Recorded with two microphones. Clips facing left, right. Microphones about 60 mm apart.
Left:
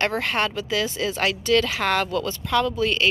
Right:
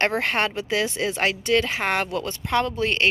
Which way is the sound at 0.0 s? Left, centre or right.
Right.